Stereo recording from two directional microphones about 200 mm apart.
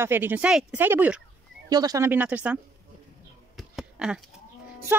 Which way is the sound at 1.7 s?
20° right (ahead or behind).